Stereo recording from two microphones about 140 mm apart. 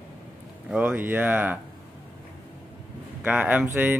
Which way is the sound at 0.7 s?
10° right (ahead or behind).